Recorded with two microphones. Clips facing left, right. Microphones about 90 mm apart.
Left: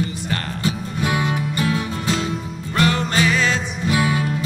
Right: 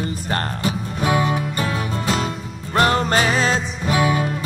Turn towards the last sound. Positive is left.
turn(degrees=-35)  # may be behind; listen again after turning